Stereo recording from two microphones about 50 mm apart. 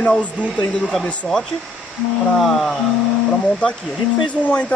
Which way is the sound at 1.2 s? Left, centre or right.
Centre.